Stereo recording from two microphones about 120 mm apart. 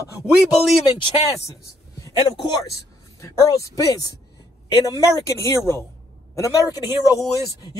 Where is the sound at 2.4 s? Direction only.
30° left (ahead or behind).